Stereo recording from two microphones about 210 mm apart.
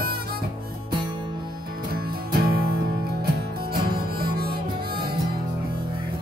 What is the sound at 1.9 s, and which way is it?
Music, 45° right (ahead or behind).